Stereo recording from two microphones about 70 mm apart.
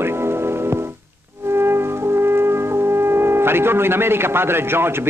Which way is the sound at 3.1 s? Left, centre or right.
Right.